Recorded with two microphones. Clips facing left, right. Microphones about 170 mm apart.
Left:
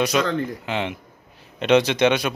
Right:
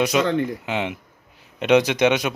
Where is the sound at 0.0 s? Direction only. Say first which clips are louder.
Right 2 dB; 20° right (ahead or behind).